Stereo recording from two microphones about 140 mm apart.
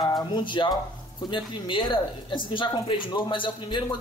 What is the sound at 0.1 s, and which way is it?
Speech, 30° left (ahead or behind).